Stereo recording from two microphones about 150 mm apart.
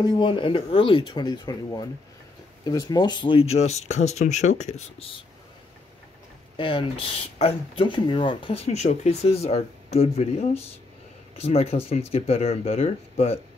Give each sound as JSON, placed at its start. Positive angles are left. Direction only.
{"t": 0.0, "sound": "speech", "side_deg": 30}
{"t": 6.5, "sound": "speech", "side_deg": 35}